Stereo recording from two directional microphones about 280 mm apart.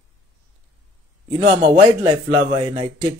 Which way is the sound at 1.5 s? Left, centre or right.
Centre.